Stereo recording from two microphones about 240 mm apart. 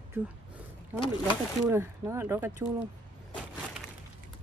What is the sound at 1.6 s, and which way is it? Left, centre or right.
Speech, centre.